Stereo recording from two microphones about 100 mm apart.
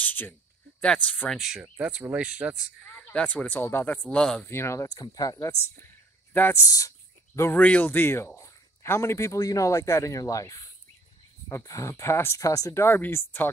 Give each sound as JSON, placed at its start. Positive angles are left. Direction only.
{"t": 0.0, "sound": "cricket", "side_deg": 15}
{"t": 1.3, "sound": "speech", "side_deg": -5}
{"t": 3.1, "sound": "speech", "side_deg": 10}
{"t": 4.5, "sound": "speech", "side_deg": 25}
{"t": 5.0, "sound": "speech", "side_deg": 45}
{"t": 6.3, "sound": "speech", "side_deg": 20}
{"t": 6.6, "sound": "speech", "side_deg": 35}
{"t": 7.5, "sound": "speech", "side_deg": 15}